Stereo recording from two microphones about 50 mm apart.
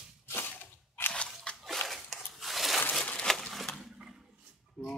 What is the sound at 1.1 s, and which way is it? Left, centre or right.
Scissors, centre.